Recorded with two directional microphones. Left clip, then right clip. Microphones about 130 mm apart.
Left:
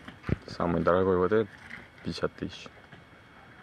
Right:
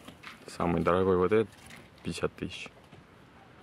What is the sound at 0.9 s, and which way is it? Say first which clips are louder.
Speech: left 1 dB; 45° right (ahead or behind).